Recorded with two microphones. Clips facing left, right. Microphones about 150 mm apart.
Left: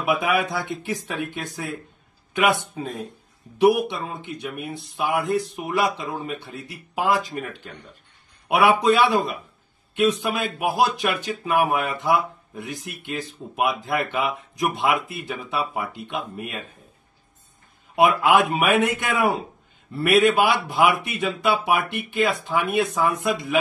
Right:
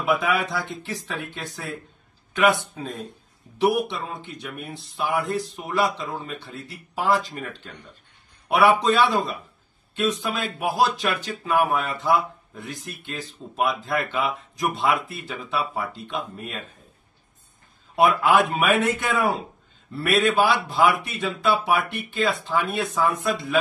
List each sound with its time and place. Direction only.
0.0 s speech: 15° left (ahead or behind)
8.5 s a man's voice: 10° left (ahead or behind)
18.3 s speech: 15° left (ahead or behind)